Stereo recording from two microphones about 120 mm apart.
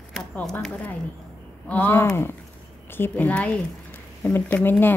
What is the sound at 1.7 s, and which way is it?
Speech, 15° left (ahead or behind).